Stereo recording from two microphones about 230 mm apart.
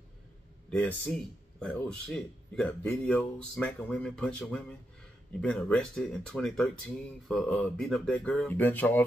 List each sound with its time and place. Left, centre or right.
0.7 s speech: centre